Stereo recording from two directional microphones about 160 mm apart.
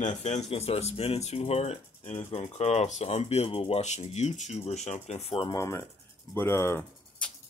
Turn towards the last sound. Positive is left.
turn(degrees=15)  # may be behind; listen again after turning